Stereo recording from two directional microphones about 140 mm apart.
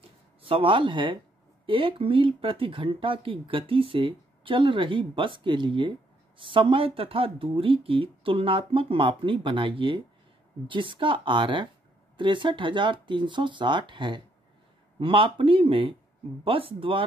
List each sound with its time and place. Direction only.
0.4 s speech: 40° right (ahead or behind)